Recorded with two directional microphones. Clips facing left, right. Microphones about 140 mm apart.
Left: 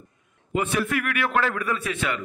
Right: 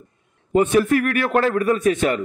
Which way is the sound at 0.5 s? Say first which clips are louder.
Right 9 dB; 40° right (ahead or behind).